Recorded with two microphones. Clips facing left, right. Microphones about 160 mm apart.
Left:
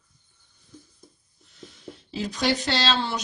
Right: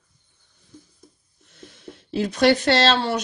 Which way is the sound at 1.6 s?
60° right (ahead or behind).